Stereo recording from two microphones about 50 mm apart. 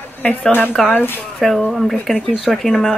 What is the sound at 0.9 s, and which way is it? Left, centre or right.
Speech, left.